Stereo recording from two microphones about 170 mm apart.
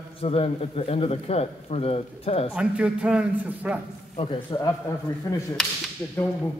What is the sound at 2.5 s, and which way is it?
A man's voice, 5° right (ahead or behind).